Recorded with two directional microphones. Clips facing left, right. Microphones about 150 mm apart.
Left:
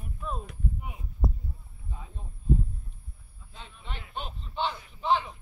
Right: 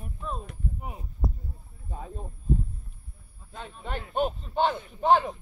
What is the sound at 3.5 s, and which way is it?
A man's voice, 45° right (ahead or behind).